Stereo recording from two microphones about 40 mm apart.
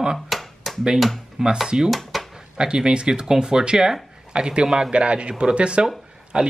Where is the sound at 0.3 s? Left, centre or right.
Centre.